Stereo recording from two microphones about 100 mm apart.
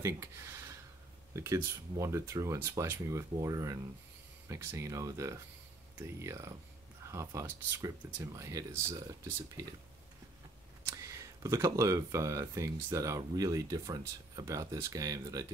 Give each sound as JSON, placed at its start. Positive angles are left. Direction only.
{"t": 0.0, "sound": "speech", "side_deg": -30}
{"t": 11.0, "sound": "speech", "side_deg": -30}